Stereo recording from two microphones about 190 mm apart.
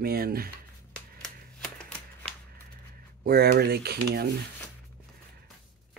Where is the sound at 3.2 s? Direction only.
55° right (ahead or behind).